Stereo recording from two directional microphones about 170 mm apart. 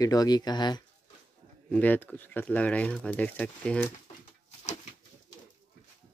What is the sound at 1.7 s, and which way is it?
Speech, 10° left (ahead or behind).